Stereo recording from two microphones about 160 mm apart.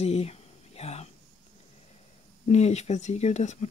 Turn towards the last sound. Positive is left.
turn(degrees=45)  # may be behind; listen again after turning